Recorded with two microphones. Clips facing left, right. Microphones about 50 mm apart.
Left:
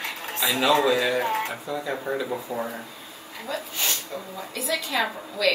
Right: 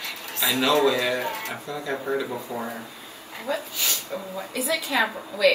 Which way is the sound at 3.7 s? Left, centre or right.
Left.